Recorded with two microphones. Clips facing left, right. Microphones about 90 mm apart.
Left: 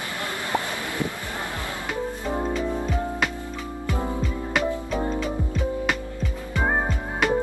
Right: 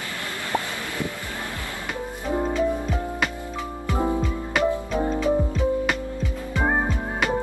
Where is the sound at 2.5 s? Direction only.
Centre (ahead or behind).